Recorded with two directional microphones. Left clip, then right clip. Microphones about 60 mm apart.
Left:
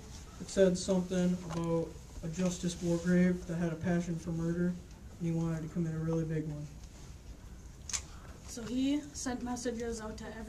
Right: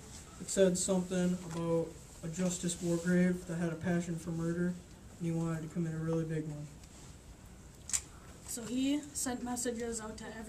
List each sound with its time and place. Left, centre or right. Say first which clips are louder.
0.5 s speech: left 1 dB; centre
2.8 s speech: left 1 dB; left
3.2 s speech: left 1 dB; centre
7.9 s a sound: even; left
8.7 s speech: left 1 dB; centre